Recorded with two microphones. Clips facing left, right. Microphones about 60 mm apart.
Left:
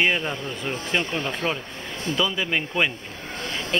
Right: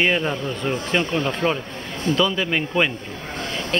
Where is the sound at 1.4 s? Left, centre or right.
Right.